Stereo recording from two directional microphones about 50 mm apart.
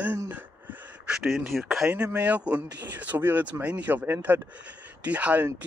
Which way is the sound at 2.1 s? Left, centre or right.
Right.